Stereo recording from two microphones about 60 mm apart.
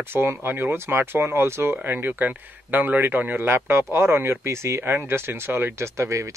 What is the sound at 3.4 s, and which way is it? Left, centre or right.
Speech, right.